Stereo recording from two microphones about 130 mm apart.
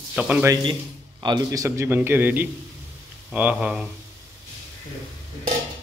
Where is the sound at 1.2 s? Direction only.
30° right (ahead or behind); by 3.9 s 5° right (ahead or behind).